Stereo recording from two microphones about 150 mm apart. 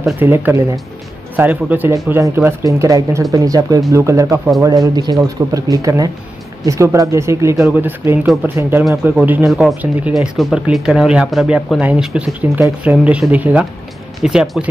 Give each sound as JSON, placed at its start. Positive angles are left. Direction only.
{"t": 0.2, "sound": "speech", "side_deg": -15}
{"t": 9.5, "sound": "speech", "side_deg": 0}